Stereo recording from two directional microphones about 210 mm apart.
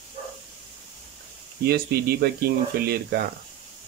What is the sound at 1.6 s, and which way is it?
Speech, 50° right (ahead or behind).